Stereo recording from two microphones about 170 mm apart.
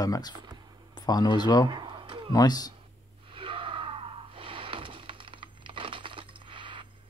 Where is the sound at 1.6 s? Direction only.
25° right (ahead or behind).